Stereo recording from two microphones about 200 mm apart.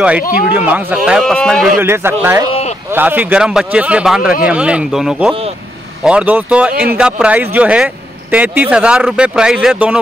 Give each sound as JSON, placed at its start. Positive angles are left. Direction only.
{"t": 0.2, "sound": "speech", "side_deg": 45}
{"t": 0.5, "sound": "speech", "side_deg": -5}
{"t": 1.8, "sound": "speech", "side_deg": -10}